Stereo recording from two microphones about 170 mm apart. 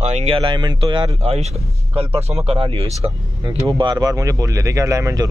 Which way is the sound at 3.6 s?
30° right (ahead or behind).